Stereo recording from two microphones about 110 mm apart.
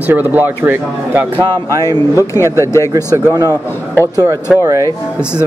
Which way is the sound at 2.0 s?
25° left (ahead or behind).